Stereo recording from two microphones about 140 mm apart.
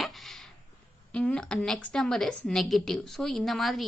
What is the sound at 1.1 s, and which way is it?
A woman's voice, 5° left (ahead or behind).